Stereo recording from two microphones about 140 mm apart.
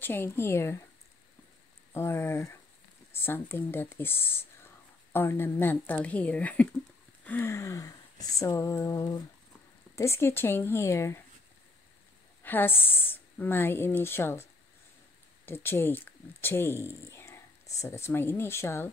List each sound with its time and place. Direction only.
0.0 s a woman's voice: 15° left (ahead or behind)
2.0 s a woman's voice: 15° left (ahead or behind)
12.4 s a woman's voice: 15° left (ahead or behind)
15.4 s speech: 15° left (ahead or behind)